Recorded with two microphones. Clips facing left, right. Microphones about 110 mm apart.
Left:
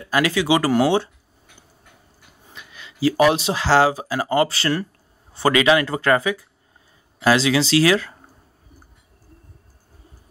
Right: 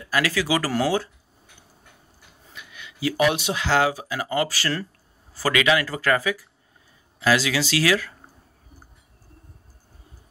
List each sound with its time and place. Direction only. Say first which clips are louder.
0.0 s speech: left 4 dB; 25° left (ahead or behind)
2.5 s speech: left 1 dB; 35° left (ahead or behind)